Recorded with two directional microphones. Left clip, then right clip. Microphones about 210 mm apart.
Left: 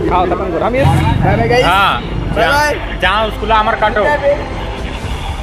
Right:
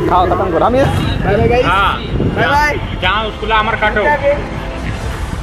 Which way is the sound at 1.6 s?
60° left (ahead or behind).